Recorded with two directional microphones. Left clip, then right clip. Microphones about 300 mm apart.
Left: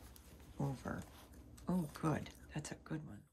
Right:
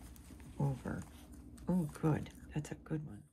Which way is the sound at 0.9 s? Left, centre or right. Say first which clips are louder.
Right 1 dB; centre.